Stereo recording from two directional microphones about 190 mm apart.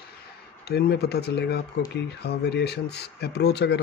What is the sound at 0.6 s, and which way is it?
Speech, 60° left (ahead or behind).